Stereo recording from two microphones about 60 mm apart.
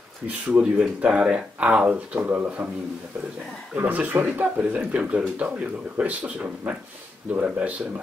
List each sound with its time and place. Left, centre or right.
0.5 s speech: right
3.7 s speech: right